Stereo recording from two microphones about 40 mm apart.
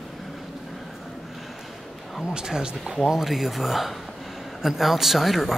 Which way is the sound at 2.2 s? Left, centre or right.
Centre.